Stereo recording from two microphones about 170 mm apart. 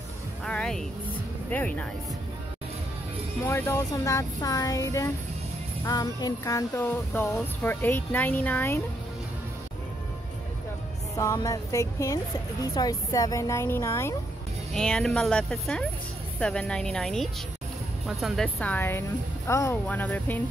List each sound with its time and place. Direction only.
0.5 s music: 5° left (ahead or behind)
3.4 s speech: 15° left (ahead or behind)
5.9 s music: 20° left (ahead or behind)
11.1 s speech: 20° left (ahead or behind)
12.7 s music: 20° left (ahead or behind)
14.7 s speech: 5° left (ahead or behind)
18.0 s music: centre (ahead or behind)